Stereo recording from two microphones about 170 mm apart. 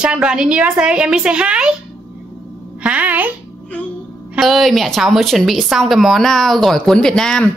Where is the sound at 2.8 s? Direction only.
10° right (ahead or behind).